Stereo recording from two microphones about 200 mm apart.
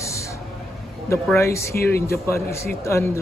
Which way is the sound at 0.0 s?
15° left (ahead or behind).